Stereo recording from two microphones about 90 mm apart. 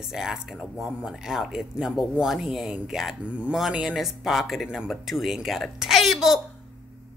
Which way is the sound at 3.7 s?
5° right (ahead or behind).